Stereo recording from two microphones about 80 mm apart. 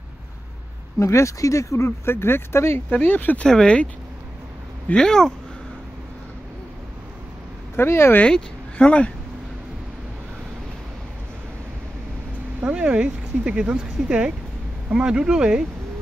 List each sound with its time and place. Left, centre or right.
0.9 s speech: left
2.9 s speech: centre
3.4 s speech: centre
7.7 s speech: left
8.2 s speech: centre
12.5 s speech: centre